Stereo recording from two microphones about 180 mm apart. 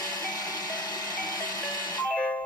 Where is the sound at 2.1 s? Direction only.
5° left (ahead or behind).